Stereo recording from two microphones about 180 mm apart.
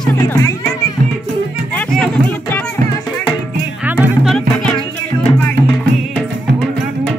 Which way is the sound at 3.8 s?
5° right (ahead or behind).